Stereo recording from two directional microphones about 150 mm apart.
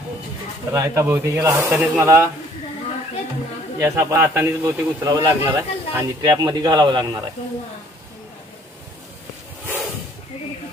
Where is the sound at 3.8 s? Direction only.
15° right (ahead or behind).